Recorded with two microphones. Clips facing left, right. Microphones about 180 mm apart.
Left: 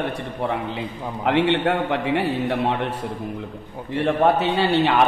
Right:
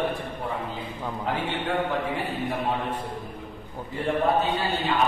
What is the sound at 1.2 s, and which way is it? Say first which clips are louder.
A man's voice: left 11 dB; 80° left.